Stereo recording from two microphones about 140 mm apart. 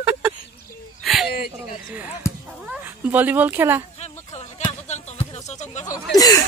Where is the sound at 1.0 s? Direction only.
Centre (ahead or behind).